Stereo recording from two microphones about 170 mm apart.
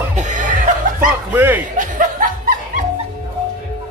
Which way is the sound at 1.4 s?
10° right (ahead or behind).